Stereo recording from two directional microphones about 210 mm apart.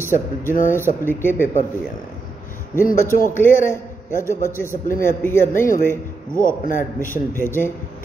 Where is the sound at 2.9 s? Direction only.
40° left (ahead or behind).